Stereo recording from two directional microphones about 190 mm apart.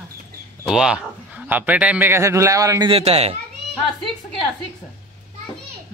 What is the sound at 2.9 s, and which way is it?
Speech, 30° right (ahead or behind).